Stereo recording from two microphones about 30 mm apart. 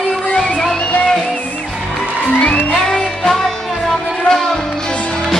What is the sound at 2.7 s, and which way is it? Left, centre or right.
Music, left.